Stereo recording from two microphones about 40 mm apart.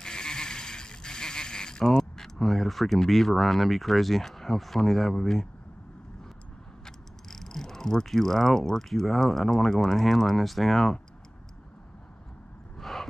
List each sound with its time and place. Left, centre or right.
0.0 s a sound: centre
5.2 s speech: centre
6.8 s speech: centre
12.7 s vehicle: centre